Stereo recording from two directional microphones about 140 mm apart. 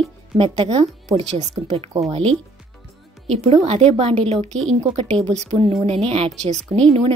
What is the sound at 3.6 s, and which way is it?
Speech, 45° right (ahead or behind).